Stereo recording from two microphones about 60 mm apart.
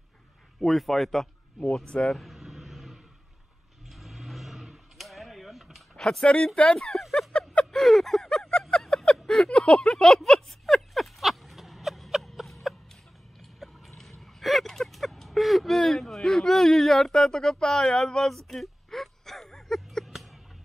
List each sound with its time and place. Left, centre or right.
0.6 s a man's voice: centre
1.9 s speech: centre
2.1 s vehicle: centre
6.2 s speech: centre
6.8 s a sound: centre